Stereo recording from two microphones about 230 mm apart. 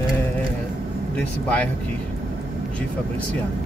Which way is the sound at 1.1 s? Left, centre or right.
Centre.